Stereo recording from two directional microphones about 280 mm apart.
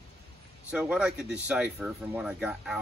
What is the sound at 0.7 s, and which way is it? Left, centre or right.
Speech, centre.